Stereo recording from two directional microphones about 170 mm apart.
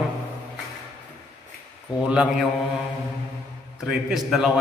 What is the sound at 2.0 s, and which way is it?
Mantra, 5° right (ahead or behind).